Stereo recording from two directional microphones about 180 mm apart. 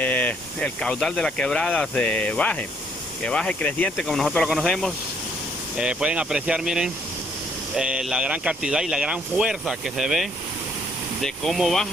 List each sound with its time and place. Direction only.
0.0 s speech: 10° left (ahead or behind)
11.2 s speech: centre (ahead or behind)